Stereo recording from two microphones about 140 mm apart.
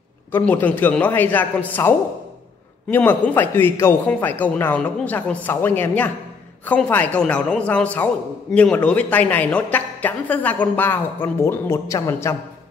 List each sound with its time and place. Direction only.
0.3 s a man's voice: 10° left (ahead or behind)